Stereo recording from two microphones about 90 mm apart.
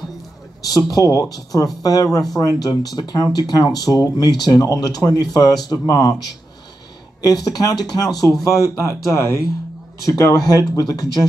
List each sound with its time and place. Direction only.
0.6 s speech: 45° left (ahead or behind)
7.2 s speech: 45° left (ahead or behind)